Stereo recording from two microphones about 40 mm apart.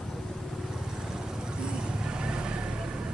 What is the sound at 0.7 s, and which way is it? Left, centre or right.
Vehicle, centre.